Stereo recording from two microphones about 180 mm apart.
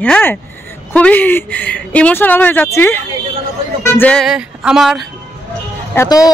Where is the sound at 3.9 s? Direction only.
5° left (ahead or behind).